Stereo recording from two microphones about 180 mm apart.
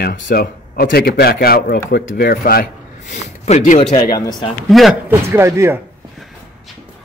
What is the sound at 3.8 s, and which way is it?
Speech, 25° left (ahead or behind).